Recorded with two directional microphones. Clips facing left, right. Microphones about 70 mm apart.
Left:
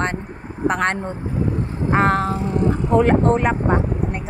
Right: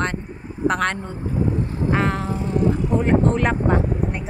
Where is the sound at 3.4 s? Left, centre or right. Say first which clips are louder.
Left 1 dB; centre.